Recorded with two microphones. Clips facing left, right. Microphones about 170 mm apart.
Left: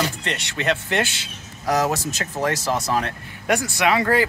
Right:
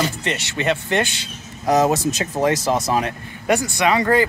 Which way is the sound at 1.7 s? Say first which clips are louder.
Right 5 dB; 20° right (ahead or behind).